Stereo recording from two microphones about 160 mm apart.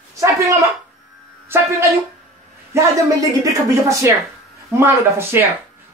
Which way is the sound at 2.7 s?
15° right (ahead or behind).